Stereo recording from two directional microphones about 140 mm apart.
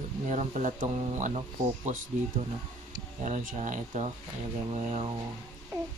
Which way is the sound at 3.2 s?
60° right (ahead or behind).